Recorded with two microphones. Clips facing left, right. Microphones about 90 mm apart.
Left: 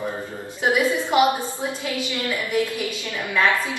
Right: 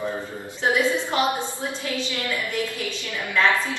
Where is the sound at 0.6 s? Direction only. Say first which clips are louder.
Left 1 dB; 15° left (ahead or behind).